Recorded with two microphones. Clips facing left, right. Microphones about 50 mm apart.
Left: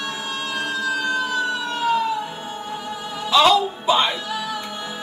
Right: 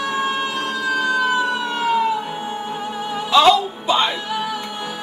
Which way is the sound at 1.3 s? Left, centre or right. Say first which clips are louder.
Right 4 dB; centre.